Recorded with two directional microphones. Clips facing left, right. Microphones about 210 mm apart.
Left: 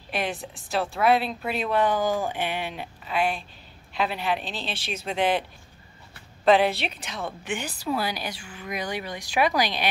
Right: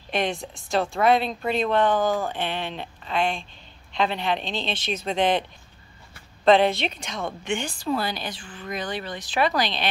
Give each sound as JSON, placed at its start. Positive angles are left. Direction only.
{"t": 0.1, "sound": "a woman's voice", "side_deg": 5}
{"t": 6.4, "sound": "a woman's voice", "side_deg": 5}